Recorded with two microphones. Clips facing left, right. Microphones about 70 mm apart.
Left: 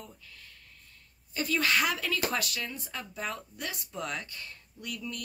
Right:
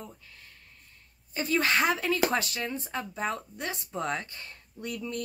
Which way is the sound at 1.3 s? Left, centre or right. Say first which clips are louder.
Right 2 dB; right.